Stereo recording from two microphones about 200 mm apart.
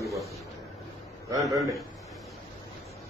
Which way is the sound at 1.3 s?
15° right (ahead or behind).